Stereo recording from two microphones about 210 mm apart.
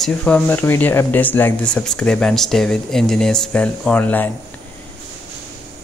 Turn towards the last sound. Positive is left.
turn(degrees=10)  # may be behind; listen again after turning